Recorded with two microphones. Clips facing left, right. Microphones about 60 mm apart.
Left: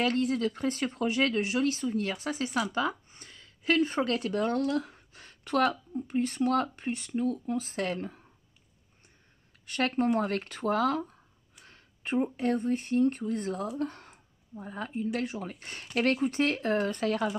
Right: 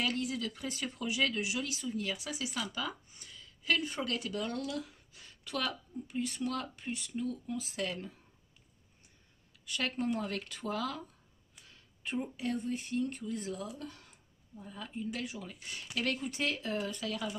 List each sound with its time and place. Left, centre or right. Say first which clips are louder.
0.0 s speech: left 7 dB; left
9.7 s speech: left 7 dB; left